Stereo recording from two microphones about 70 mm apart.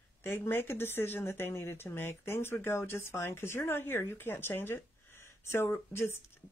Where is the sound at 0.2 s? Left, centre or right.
Left.